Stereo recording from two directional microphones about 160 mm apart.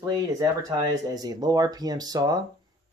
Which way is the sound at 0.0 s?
25° right (ahead or behind).